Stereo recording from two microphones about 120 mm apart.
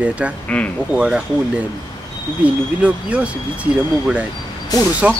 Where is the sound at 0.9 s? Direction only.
5° right (ahead or behind).